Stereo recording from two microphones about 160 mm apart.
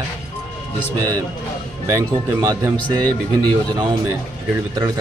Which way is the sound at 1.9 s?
20° right (ahead or behind).